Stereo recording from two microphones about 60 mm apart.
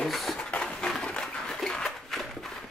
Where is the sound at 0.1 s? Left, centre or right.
Centre.